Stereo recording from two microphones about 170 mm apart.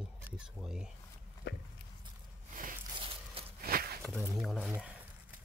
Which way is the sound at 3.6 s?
60° right (ahead or behind).